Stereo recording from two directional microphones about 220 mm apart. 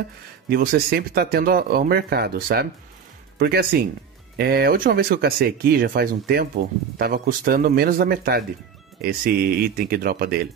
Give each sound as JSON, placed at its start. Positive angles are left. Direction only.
{"t": 0.5, "sound": "speech", "side_deg": -45}